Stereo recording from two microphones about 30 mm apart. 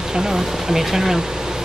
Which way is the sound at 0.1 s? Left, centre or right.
Centre.